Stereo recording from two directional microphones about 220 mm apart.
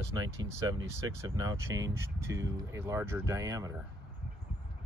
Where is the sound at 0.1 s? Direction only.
15° right (ahead or behind).